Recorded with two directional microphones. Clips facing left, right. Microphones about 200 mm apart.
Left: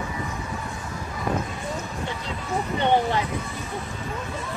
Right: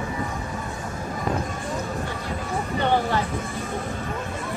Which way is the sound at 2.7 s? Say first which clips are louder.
Left 1 dB; 20° left (ahead or behind).